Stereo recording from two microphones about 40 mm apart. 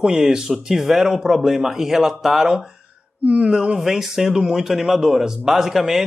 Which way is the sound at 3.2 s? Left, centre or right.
Right.